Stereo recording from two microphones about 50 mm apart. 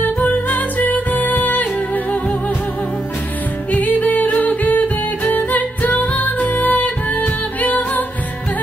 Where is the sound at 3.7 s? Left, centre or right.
Left.